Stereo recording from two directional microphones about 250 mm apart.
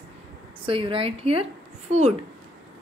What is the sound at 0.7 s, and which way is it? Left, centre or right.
A woman's voice, right.